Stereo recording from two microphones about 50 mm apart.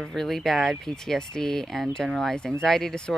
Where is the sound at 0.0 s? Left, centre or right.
Centre.